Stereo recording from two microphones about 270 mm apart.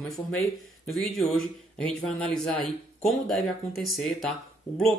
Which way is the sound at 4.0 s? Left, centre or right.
Centre.